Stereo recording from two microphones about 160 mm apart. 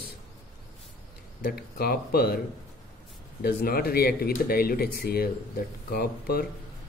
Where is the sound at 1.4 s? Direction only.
70° left (ahead or behind).